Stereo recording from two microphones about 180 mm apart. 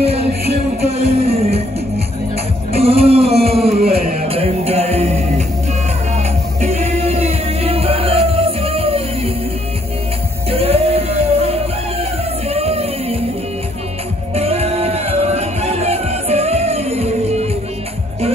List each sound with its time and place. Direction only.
0.9 s music: 35° right (ahead or behind)
2.7 s music: 35° right (ahead or behind)
3.8 s music: 55° right (ahead or behind)
4.3 s music: 35° right (ahead or behind)
10.5 s music: 35° right (ahead or behind)
14.3 s music: 35° right (ahead or behind)